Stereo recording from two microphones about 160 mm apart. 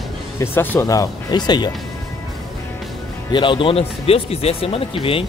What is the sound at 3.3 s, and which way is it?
Speech, 30° left (ahead or behind).